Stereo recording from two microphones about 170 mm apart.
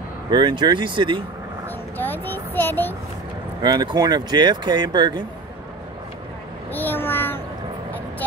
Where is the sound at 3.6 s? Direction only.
25° right (ahead or behind).